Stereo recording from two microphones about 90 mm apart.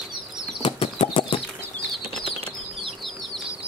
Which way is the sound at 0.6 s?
90° left.